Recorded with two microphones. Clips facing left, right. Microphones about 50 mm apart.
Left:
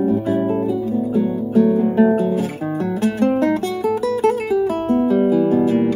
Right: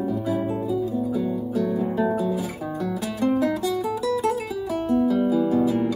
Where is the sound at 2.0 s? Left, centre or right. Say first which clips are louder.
Left 8 dB; left.